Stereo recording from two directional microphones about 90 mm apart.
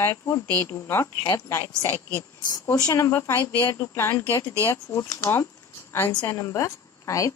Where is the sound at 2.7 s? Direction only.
45° left (ahead or behind); by 5.4 s 25° left (ahead or behind).